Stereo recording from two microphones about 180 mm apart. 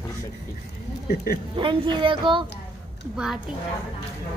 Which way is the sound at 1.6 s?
25° right (ahead or behind).